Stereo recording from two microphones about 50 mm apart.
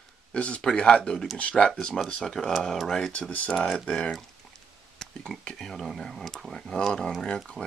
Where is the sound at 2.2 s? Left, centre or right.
Centre.